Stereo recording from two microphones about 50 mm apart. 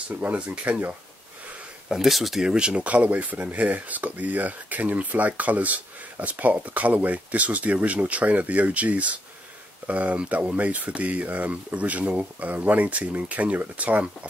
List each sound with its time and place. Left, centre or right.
0.1 s speech: right
1.9 s speech: centre
2.4 s speech: centre